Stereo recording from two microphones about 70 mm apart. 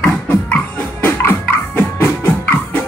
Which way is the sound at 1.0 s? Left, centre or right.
Left.